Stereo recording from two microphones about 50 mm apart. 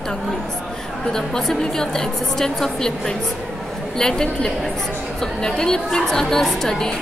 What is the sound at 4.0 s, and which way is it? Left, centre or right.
A woman's voice, centre.